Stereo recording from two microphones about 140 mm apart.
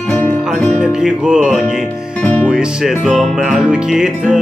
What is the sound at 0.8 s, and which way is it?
Music, 5° right (ahead or behind).